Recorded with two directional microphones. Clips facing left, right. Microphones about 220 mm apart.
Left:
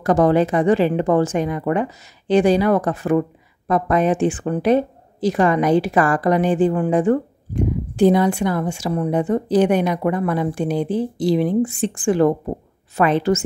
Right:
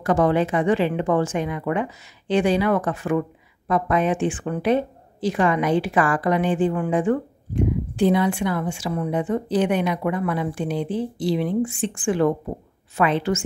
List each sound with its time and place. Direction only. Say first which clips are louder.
0.0 s a woman's voice: left 4 dB; 40° left (ahead or behind)